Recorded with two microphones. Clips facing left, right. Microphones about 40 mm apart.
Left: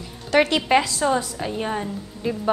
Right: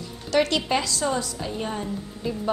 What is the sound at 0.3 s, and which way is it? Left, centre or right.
A woman's voice, left.